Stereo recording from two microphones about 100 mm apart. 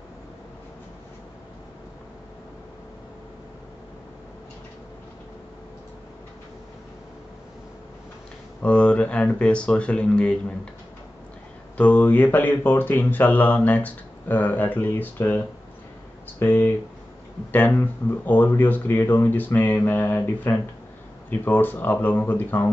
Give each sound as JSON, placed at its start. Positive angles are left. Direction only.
{"t": 8.6, "sound": "speech", "side_deg": 10}
{"t": 11.7, "sound": "speech", "side_deg": 15}